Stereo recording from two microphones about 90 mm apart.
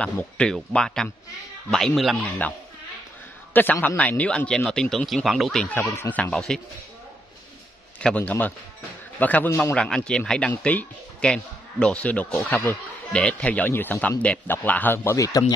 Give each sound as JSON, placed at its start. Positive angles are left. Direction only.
{"t": 0.0, "sound": "a man's voice", "side_deg": 15}
{"t": 3.5, "sound": "a man's voice", "side_deg": 20}
{"t": 5.8, "sound": "a man's voice", "side_deg": 30}
{"t": 6.3, "sound": "a man's voice", "side_deg": 5}
{"t": 8.2, "sound": "a man's voice", "side_deg": 20}
{"t": 15.1, "sound": "a man's voice", "side_deg": 40}